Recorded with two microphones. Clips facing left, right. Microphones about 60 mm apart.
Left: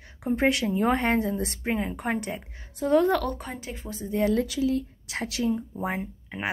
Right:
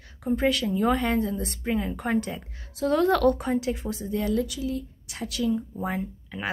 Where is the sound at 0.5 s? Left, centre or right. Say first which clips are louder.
Even; left; by 4.0 s centre.